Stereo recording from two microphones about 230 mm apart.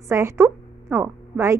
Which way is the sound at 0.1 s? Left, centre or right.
Centre.